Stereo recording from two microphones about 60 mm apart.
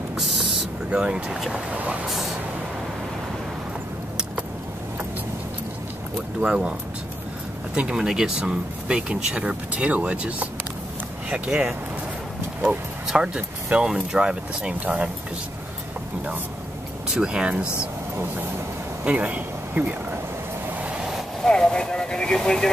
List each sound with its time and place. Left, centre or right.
0.1 s vehicle: centre
0.9 s speech: centre
6.4 s speech: centre
7.7 s speech: right
8.0 s speech: centre
12.6 s speech: centre
17.1 s speech: centre
19.0 s speech: right
20.8 s vehicle: centre
21.5 s speech: centre